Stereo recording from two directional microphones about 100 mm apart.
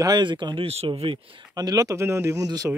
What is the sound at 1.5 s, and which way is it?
Speech, 40° right (ahead or behind).